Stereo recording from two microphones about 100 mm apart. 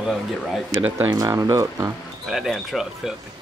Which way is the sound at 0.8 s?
20° right (ahead or behind).